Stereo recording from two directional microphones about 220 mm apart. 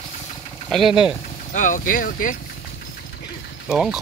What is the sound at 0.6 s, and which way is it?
Speech, centre (ahead or behind).